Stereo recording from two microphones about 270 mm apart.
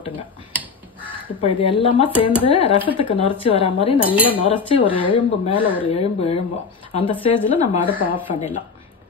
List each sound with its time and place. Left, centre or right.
1.4 s speech: centre